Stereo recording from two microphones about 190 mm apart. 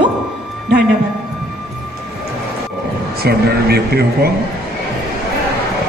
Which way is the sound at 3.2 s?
55° right (ahead or behind).